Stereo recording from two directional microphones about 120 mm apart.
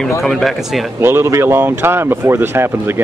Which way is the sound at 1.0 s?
25° right (ahead or behind).